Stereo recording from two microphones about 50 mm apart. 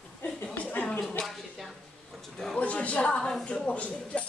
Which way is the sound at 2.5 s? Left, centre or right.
Left.